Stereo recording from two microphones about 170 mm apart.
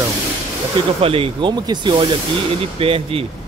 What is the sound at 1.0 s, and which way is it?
Speech, 35° right (ahead or behind).